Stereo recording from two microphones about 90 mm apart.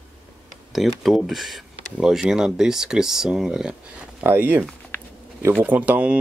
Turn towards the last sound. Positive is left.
turn(degrees=-15)  # may be behind; listen again after turning